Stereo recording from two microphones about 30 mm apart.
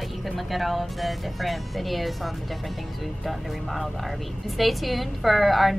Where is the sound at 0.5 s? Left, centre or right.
Centre.